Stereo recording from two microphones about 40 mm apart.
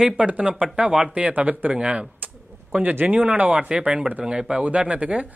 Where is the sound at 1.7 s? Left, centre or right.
Right.